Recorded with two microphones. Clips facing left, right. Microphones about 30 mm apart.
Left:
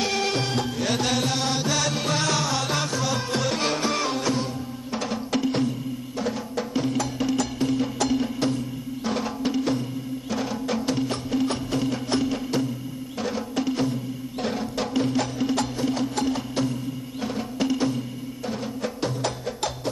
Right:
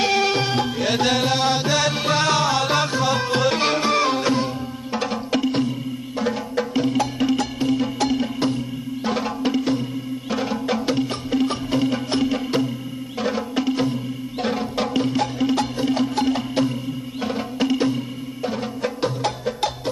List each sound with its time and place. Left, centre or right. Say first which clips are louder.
0.0 s music: right 5 dB; centre
7.6 s music: right 3 dB; centre
9.1 s music: right 3 dB; centre
15.8 s music: right 4 dB; right